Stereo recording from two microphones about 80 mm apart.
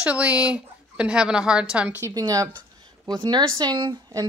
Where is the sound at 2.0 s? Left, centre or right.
Right.